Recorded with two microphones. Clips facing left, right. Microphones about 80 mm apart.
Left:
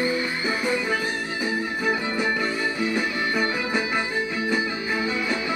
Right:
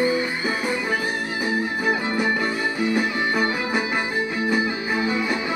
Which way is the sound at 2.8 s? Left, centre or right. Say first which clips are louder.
Right 5 dB; centre.